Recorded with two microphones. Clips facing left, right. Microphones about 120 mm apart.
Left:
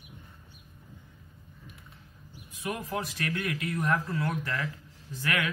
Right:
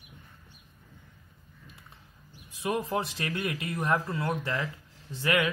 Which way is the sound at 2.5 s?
30° right (ahead or behind).